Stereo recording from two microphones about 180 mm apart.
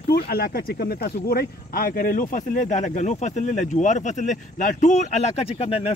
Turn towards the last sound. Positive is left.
turn(degrees=35)  # may be behind; listen again after turning